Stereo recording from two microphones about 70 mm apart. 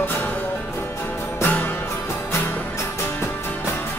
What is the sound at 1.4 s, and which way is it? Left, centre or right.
Music, left.